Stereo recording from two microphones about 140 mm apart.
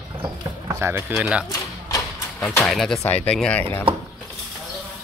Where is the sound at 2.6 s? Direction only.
Centre (ahead or behind).